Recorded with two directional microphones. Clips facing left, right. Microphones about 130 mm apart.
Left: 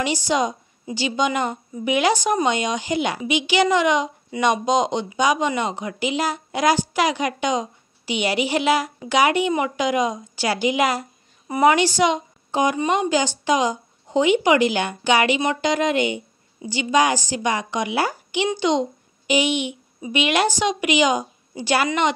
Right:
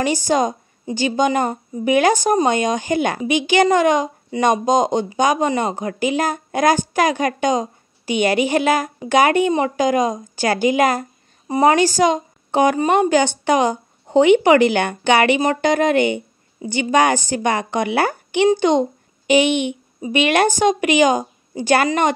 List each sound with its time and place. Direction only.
0.0 s a woman's voice: 45° right (ahead or behind)
11.4 s a woman's voice: 30° right (ahead or behind)
11.7 s a woman's voice: 45° right (ahead or behind)
12.4 s a sound: 60° right (ahead or behind)
12.7 s a woman's voice: 45° right (ahead or behind)